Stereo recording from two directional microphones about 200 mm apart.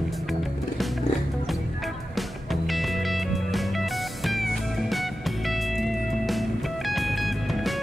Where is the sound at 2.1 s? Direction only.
Centre (ahead or behind).